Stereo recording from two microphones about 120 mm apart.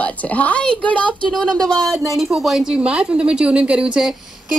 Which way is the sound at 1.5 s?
35° right (ahead or behind).